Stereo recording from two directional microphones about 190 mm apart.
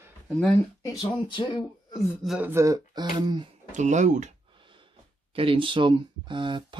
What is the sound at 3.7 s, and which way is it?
Speech, 40° right (ahead or behind).